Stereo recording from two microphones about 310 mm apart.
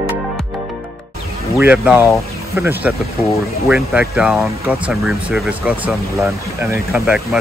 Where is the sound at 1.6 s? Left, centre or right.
Centre.